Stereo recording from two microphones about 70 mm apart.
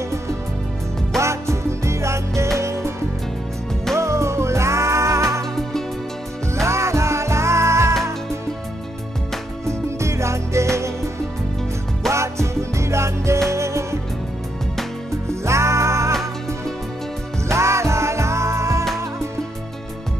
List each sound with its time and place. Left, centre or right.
1.1 s music: right
3.9 s music: right
5.6 s music: centre
6.5 s music: right
9.7 s music: right
12.1 s music: right
15.4 s music: right
17.5 s music: right